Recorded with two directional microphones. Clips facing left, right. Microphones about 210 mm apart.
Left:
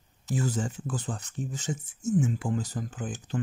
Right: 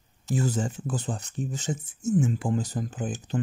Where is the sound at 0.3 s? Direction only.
25° right (ahead or behind).